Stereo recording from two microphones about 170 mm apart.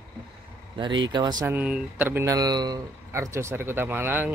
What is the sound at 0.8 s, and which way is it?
Speech, 25° right (ahead or behind).